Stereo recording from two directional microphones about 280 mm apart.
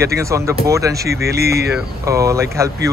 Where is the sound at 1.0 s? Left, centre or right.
Right.